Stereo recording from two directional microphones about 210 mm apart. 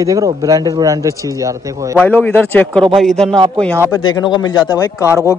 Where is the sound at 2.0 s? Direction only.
10° left (ahead or behind).